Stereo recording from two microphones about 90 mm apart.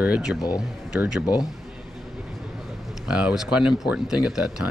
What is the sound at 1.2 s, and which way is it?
Speech, 45° left (ahead or behind).